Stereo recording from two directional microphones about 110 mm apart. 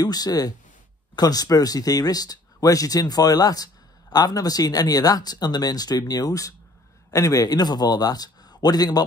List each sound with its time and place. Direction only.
0.0 s a man's voice: 35° left (ahead or behind)